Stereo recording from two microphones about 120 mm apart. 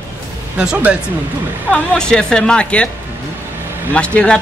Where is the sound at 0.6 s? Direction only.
15° right (ahead or behind).